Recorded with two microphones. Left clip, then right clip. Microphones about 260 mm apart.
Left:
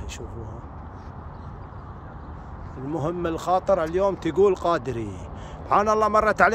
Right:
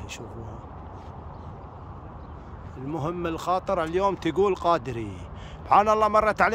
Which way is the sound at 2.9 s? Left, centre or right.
Centre.